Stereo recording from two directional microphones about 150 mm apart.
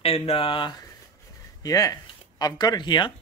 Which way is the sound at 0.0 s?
40° left (ahead or behind).